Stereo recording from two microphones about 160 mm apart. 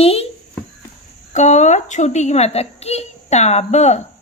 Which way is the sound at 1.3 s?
50° left (ahead or behind).